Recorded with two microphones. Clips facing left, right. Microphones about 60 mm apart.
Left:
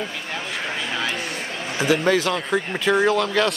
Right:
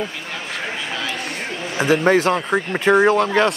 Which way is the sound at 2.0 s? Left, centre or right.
Right.